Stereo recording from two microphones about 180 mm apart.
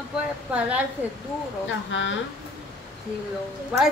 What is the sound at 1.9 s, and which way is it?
Speech, 90° left.